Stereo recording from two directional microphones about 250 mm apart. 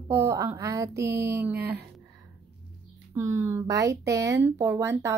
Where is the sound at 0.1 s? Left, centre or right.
Centre.